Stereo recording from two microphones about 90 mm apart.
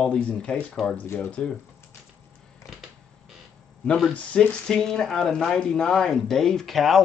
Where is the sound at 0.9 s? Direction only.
25° left (ahead or behind).